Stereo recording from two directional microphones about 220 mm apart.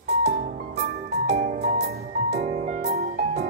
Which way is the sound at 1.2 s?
30° right (ahead or behind).